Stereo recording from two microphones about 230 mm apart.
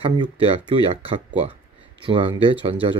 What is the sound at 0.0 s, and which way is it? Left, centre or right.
Speech, right.